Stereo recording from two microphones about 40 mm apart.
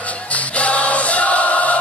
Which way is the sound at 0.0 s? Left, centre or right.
Left.